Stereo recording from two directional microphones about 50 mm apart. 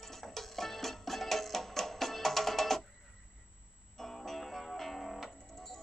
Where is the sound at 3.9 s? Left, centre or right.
Centre.